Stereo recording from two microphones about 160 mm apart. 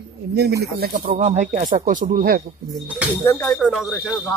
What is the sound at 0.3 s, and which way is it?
Speech, 85° right.